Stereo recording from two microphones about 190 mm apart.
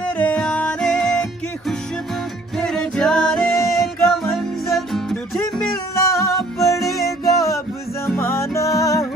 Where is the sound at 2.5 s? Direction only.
5° left (ahead or behind).